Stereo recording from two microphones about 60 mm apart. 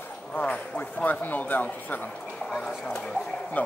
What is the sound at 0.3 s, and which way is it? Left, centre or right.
Speech, left.